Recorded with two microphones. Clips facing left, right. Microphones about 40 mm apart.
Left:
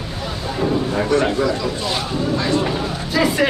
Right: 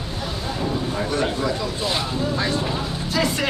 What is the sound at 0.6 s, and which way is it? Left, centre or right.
Speech, left.